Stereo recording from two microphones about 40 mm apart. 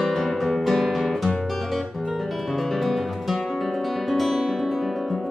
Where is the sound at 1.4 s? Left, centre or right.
Centre.